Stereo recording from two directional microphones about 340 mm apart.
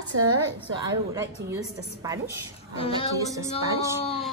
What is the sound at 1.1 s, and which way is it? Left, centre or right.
A woman's voice, centre.